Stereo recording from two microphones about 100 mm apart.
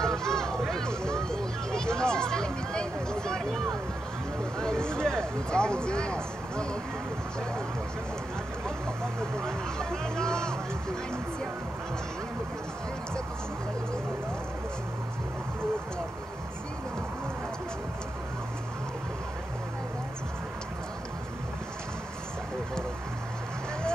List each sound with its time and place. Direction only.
0.0 s a sound: 5° left (ahead or behind)
4.6 s speech: 10° left (ahead or behind)
8.6 s speech: 5° left (ahead or behind)